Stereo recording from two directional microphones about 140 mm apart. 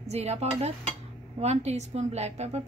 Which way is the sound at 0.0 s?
50° right (ahead or behind).